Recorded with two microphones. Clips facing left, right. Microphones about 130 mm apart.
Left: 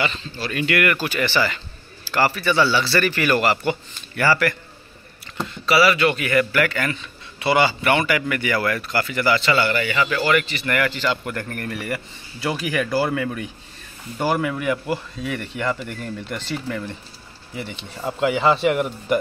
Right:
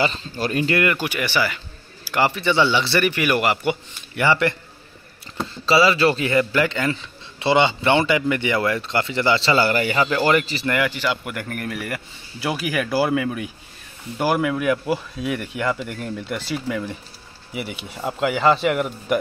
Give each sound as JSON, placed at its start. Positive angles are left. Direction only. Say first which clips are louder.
{"t": 0.0, "sound": "speech", "louder": "right 3 dB", "side_deg": -40}
{"t": 0.8, "sound": "speech", "louder": "left 1 dB", "side_deg": -15}
{"t": 10.7, "sound": "speech", "louder": "even", "side_deg": -15}